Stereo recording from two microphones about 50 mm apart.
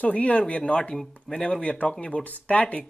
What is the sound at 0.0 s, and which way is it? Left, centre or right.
Speech, left.